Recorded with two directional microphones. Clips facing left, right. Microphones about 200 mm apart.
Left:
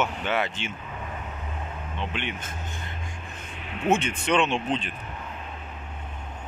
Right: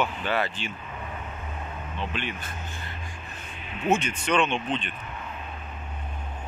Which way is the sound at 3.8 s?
25° left (ahead or behind).